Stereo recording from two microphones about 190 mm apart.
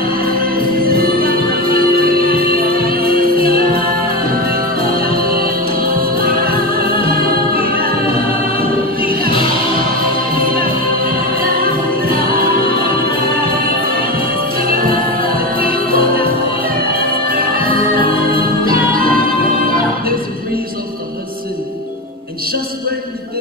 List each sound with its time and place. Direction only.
0.8 s music: 50° right (ahead or behind)
7.5 s a capella: 50° right (ahead or behind)
8.5 s choir: 50° right (ahead or behind)
11.3 s music: 50° right (ahead or behind)
14.6 s music: 50° right (ahead or behind)
18.3 s music: 50° right (ahead or behind)